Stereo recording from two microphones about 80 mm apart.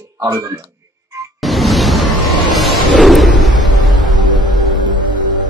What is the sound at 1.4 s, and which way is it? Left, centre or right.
Music, centre.